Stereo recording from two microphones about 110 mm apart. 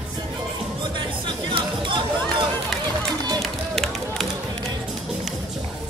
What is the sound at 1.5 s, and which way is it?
Chatter, 50° right (ahead or behind).